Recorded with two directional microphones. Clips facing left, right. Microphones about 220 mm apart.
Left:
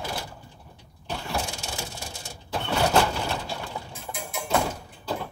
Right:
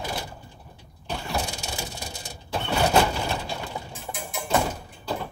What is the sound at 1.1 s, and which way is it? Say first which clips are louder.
Mechanisms: right 1 dB; 5° right (ahead or behind).